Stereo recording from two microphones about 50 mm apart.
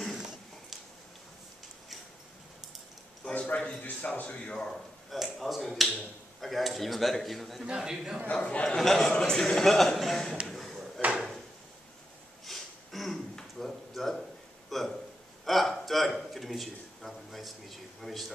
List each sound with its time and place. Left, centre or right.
3.4 s a man's voice: left
5.1 s speech: centre
7.6 s a man's voice: centre
8.3 s speech: left
8.6 s a man's voice: centre
10.4 s a sound: centre
12.4 s a sound: centre